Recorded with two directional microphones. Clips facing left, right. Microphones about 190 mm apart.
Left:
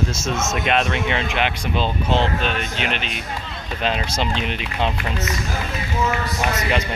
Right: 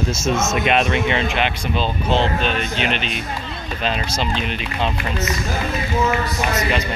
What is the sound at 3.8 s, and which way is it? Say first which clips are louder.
Speech: left 1 dB; 15° left (ahead or behind).